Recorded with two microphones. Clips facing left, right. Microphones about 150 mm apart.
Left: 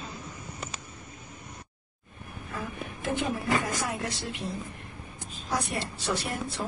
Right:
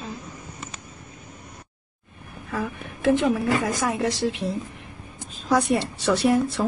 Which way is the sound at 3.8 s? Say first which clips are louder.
Right 8 dB; 90° right.